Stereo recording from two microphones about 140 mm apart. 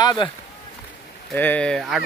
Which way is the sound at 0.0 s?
30° left (ahead or behind).